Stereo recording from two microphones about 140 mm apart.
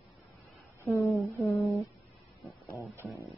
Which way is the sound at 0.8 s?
20° left (ahead or behind).